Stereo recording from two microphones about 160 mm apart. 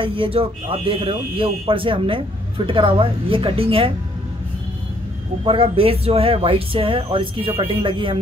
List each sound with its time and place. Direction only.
0.0 s speech: 35° right (ahead or behind)
5.4 s speech: 35° right (ahead or behind)